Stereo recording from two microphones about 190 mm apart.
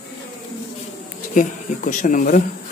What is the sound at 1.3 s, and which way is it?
Speech, 45° left (ahead or behind).